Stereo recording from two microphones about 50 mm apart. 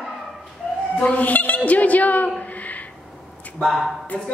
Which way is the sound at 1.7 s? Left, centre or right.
Left.